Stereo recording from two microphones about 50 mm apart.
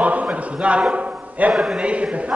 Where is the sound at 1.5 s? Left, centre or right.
Centre.